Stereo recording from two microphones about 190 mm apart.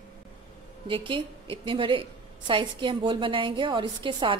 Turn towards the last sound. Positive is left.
turn(degrees=-25)  # may be behind; listen again after turning